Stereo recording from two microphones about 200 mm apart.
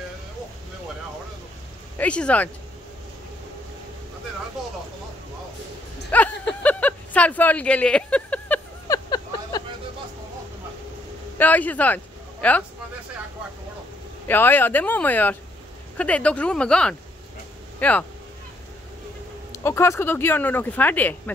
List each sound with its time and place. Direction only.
2.0 s speech: 5° left (ahead or behind)
6.1 s a sound: 5° left (ahead or behind)
8.8 s a sound: 20° left (ahead or behind)
11.3 s speech: 10° left (ahead or behind)
14.2 s speech: 10° left (ahead or behind)
19.5 s speech: 15° left (ahead or behind)